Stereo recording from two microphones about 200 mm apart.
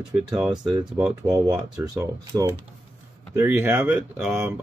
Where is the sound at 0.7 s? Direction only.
15° right (ahead or behind).